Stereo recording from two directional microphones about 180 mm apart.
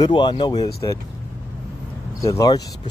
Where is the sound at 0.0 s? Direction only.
25° left (ahead or behind).